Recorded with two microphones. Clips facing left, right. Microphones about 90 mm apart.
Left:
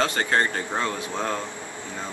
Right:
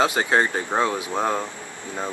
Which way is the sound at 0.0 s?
10° right (ahead or behind).